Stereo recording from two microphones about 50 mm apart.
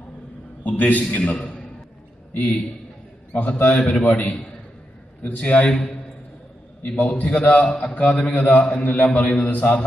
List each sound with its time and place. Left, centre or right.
0.7 s a man's voice: left
3.3 s a man's voice: left
6.8 s a man's voice: left